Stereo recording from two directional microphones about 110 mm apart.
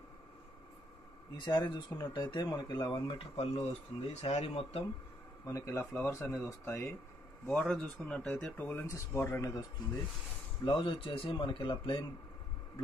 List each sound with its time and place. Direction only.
1.3 s speech: 40° left (ahead or behind)
4.1 s speech: 90° left
5.5 s speech: 20° left (ahead or behind)
7.4 s speech: 5° left (ahead or behind)
8.8 s speech: 25° left (ahead or behind)
10.6 s speech: 50° left (ahead or behind)